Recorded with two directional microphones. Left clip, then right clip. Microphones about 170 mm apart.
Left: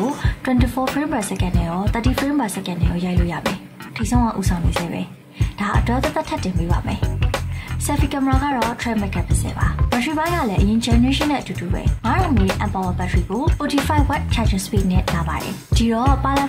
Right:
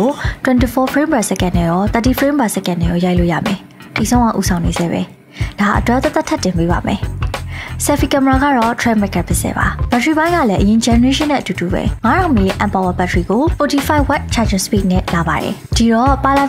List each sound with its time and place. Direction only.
0.0 s speech: 40° right (ahead or behind)
15.7 s music: 40° right (ahead or behind)